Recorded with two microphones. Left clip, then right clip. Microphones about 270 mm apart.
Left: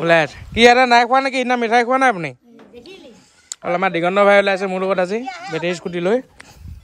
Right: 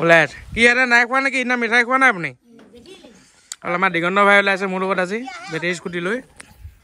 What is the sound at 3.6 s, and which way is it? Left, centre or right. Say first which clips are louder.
Speech: left 1 dB; centre.